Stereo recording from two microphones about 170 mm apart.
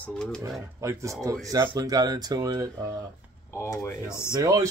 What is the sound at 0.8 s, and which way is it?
Speech, 15° right (ahead or behind).